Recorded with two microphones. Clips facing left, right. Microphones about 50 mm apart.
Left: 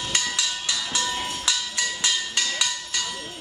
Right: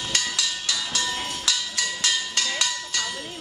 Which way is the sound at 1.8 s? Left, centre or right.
Left.